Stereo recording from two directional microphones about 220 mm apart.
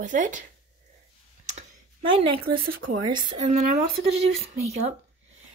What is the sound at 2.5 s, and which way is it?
Speech, 45° right (ahead or behind).